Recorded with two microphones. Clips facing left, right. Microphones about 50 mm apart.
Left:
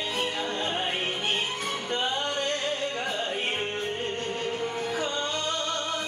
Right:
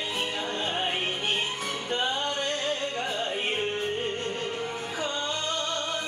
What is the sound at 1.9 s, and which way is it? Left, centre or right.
Music, centre.